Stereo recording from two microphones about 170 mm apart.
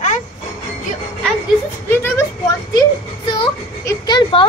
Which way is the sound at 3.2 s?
30° left (ahead or behind).